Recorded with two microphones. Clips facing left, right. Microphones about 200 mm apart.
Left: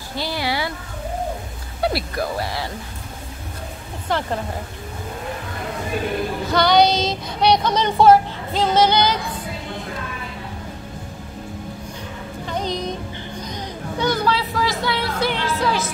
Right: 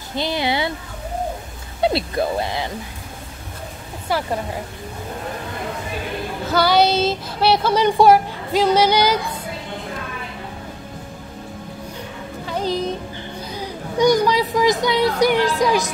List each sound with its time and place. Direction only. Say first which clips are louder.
0.1 s a sound: right 3 dB; 20° right (ahead or behind)
1.8 s speech: right 3 dB; 25° right (ahead or behind)
4.1 s speech: right 1 dB; 10° right (ahead or behind)
6.5 s speech: even; 5° right (ahead or behind)
12.4 s music: right 3 dB; 5° right (ahead or behind)
13.4 s speech: right 2 dB; 10° right (ahead or behind)